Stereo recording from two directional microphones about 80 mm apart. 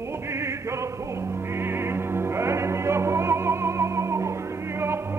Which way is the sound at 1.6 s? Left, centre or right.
Right.